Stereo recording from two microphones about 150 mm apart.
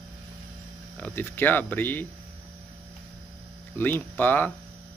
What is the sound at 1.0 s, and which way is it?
Speech, 15° left (ahead or behind).